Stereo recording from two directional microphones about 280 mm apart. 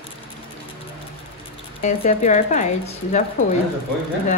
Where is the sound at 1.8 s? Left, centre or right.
Left.